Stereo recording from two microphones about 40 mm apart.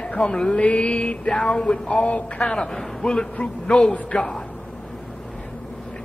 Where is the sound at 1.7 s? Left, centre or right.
Left.